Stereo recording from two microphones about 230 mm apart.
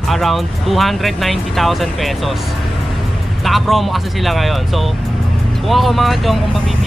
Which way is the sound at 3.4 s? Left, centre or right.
Centre.